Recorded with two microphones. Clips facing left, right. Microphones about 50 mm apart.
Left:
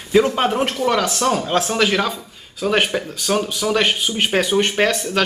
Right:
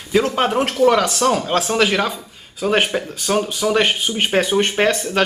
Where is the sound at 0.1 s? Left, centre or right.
Centre.